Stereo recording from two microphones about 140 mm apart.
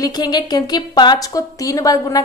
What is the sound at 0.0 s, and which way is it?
A woman's voice, 30° left (ahead or behind).